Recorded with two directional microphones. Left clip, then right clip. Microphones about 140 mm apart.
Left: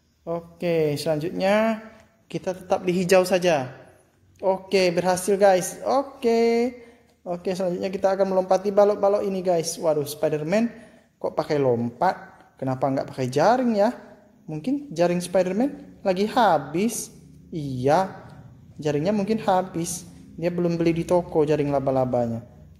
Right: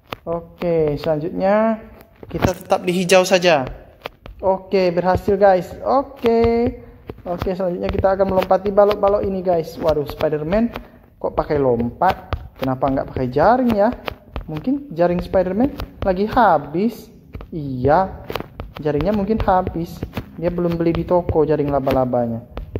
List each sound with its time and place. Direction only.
0.3 s a woman's voice: 15° left (ahead or behind)
2.7 s speech: 5° left (ahead or behind)
4.4 s a woman's voice: 15° left (ahead or behind)